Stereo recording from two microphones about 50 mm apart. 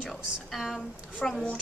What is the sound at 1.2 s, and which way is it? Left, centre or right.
Speech, centre.